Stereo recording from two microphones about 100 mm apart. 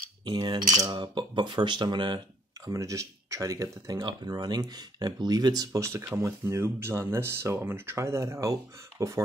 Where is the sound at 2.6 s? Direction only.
35° right (ahead or behind).